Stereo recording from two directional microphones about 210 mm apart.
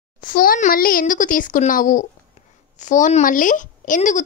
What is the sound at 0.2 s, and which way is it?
Speech, 40° left (ahead or behind).